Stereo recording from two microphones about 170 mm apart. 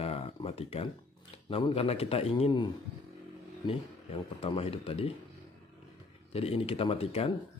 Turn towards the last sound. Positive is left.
turn(degrees=35)  # may be behind; listen again after turning